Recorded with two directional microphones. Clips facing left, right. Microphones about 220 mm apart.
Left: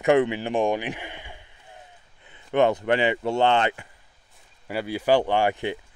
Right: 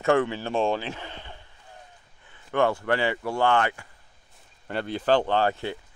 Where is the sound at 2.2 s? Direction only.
20° left (ahead or behind).